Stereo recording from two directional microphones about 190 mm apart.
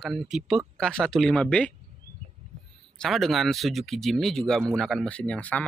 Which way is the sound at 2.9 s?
Centre (ahead or behind).